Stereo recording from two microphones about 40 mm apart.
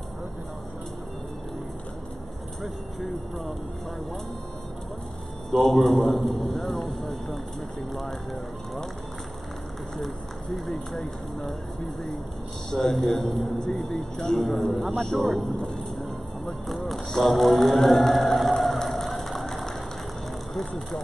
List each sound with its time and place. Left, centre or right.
2.6 s speech: centre
5.5 s speech: centre
9.9 s speech: centre
15.5 s speech: centre
16.0 s a sound: centre
16.8 s chant: centre
19.4 s a sound: centre
20.5 s speech: centre